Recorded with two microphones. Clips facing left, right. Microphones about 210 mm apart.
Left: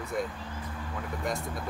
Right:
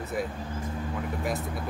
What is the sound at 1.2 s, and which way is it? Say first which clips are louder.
Speech: left 1 dB; 5° right (ahead or behind).